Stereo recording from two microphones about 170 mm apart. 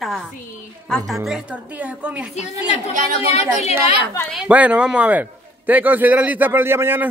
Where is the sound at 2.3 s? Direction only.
40° left (ahead or behind).